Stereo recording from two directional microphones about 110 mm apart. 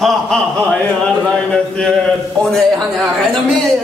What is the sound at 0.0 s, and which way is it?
Speech, 5° left (ahead or behind).